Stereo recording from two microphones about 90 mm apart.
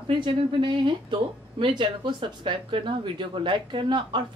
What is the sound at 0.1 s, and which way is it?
Speech, 65° right (ahead or behind).